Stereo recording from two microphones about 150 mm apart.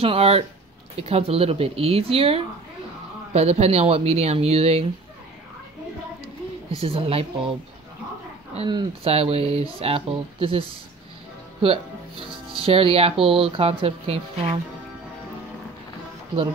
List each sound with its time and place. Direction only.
0.0 s speech: 40° right (ahead or behind)
6.8 s speech: 40° right (ahead or behind)
8.6 s speech: 35° right (ahead or behind)
11.6 s speech: 35° right (ahead or behind)